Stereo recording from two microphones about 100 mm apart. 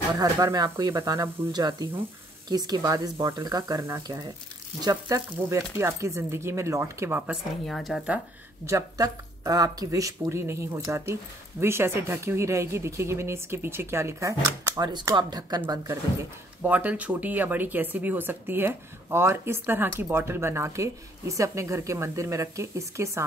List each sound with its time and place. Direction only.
0.1 s speech: 40° right (ahead or behind); by 7.3 s 20° right (ahead or behind)
7.6 s a woman's voice: centre (ahead or behind)
8.6 s speech: 30° right (ahead or behind)
14.8 s a woman's voice: 45° right (ahead or behind)
16.6 s speech: 15° right (ahead or behind)